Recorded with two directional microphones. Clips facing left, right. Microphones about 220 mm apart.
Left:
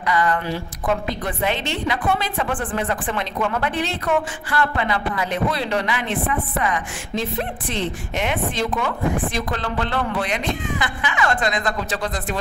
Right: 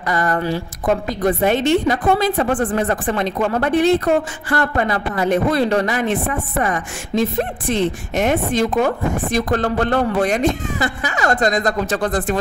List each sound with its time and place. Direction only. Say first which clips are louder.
0.0 s a woman's voice: right 2 dB; 45° right (ahead or behind)